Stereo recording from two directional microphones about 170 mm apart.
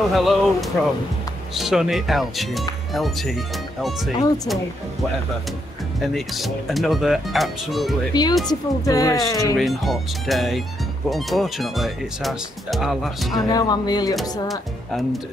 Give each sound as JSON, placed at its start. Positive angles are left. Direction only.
{"t": 0.1, "sound": "speech", "side_deg": 0}
{"t": 5.9, "sound": "speech", "side_deg": 0}
{"t": 8.1, "sound": "speech", "side_deg": 25}
{"t": 9.6, "sound": "speech", "side_deg": 0}
{"t": 13.5, "sound": "speech", "side_deg": 25}
{"t": 14.5, "sound": "speech", "side_deg": 0}